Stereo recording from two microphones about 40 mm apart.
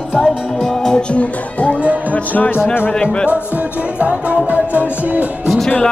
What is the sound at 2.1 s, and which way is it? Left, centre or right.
Music, left.